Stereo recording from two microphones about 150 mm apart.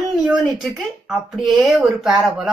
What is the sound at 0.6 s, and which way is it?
A woman's voice, centre (ahead or behind).